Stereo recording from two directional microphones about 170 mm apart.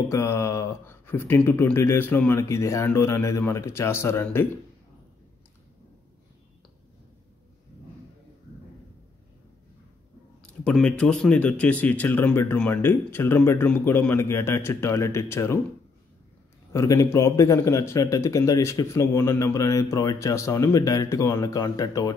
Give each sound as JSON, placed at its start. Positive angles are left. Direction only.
{"t": 0.1, "sound": "speech", "side_deg": 15}
{"t": 10.4, "sound": "speech", "side_deg": 5}
{"t": 16.7, "sound": "speech", "side_deg": 20}